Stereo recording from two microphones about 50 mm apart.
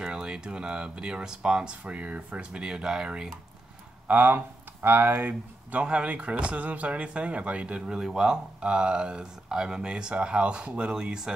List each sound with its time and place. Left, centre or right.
0.0 s speech: centre
2.6 s speech: centre
4.1 s speech: right
5.8 s speech: right